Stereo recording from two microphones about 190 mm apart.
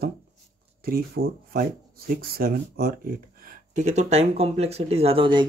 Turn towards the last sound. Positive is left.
turn(degrees=-25)  # may be behind; listen again after turning